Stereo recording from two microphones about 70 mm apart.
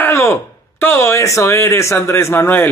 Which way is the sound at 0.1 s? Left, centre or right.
Left.